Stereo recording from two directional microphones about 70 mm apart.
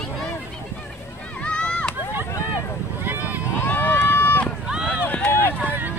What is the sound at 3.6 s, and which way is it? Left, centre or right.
Run, left.